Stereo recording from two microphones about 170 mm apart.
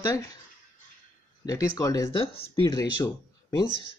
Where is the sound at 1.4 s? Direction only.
20° left (ahead or behind).